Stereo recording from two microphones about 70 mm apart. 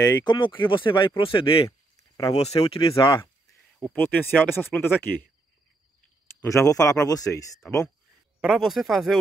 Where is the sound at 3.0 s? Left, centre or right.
Left.